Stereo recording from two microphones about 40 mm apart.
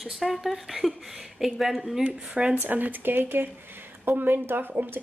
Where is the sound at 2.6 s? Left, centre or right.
Right.